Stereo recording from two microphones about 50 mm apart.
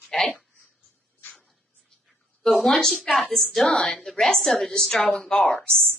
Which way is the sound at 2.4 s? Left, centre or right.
Centre.